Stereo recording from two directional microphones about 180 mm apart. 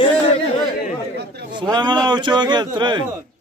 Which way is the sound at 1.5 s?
25° right (ahead or behind).